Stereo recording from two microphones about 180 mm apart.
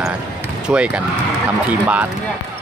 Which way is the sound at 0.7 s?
5° right (ahead or behind).